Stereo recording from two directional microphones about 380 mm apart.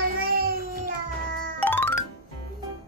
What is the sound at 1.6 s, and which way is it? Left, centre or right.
Music, centre.